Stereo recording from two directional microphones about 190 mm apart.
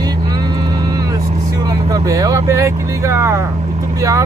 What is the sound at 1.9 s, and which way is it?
Speech, 20° right (ahead or behind).